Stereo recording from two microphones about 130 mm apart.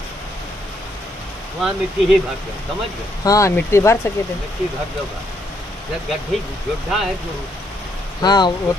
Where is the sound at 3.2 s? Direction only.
25° left (ahead or behind).